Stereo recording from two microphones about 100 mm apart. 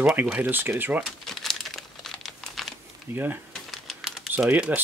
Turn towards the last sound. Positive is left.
turn(degrees=-15)  # may be behind; listen again after turning